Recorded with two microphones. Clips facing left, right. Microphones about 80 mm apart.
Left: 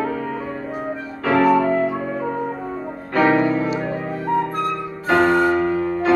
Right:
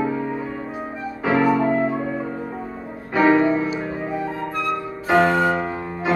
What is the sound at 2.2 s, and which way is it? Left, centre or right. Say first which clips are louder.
Music: left 4 dB; left.